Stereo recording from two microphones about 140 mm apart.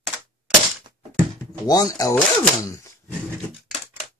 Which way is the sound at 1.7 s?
25° left (ahead or behind).